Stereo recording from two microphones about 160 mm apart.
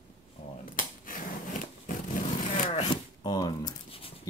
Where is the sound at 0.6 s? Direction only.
60° left (ahead or behind).